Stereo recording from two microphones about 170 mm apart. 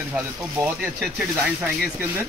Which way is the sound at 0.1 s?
10° right (ahead or behind).